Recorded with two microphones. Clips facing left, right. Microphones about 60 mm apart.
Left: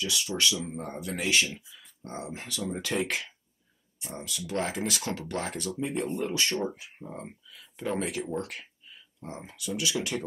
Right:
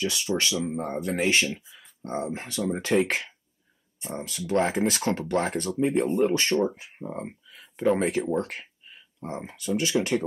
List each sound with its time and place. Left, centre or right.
0.0 s speech: right